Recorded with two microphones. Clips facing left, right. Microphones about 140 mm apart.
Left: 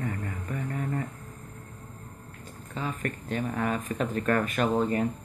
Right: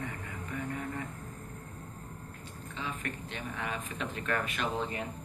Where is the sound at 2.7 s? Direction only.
45° left (ahead or behind).